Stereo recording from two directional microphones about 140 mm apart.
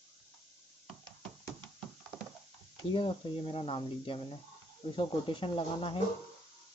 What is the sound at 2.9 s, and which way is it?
Speech, 40° left (ahead or behind).